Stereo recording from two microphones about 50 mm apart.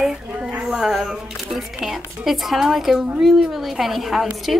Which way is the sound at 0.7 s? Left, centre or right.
Centre.